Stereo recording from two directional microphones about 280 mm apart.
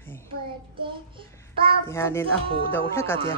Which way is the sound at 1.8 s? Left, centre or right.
Centre.